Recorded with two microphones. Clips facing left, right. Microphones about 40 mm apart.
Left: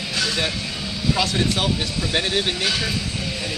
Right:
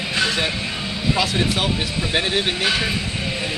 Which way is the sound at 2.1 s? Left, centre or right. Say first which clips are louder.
Right 1 dB; centre.